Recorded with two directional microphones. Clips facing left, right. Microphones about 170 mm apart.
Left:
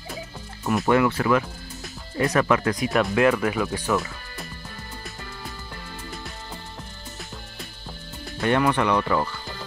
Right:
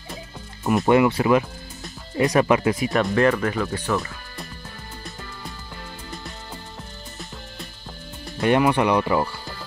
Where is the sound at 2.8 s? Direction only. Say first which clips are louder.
Right 1 dB; centre (ahead or behind).